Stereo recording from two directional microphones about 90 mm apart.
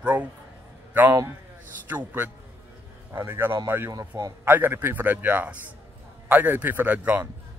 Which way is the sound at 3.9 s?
40° right (ahead or behind).